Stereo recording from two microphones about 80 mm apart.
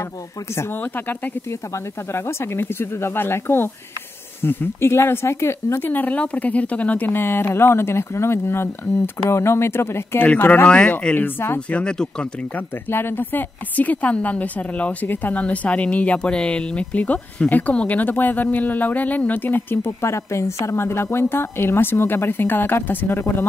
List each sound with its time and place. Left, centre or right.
0.6 s speech: left
10.2 s speech: centre
11.1 s speech: left
11.8 s speech: centre
12.5 s speech: left